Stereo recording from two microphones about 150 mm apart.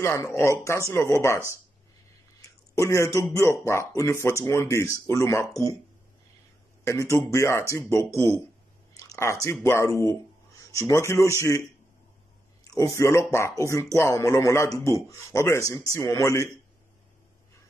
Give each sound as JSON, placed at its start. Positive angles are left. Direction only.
{"t": 0.0, "sound": "speech", "side_deg": 20}
{"t": 2.7, "sound": "speech", "side_deg": 20}
{"t": 6.8, "sound": "speech", "side_deg": 20}
{"t": 12.7, "sound": "speech", "side_deg": 20}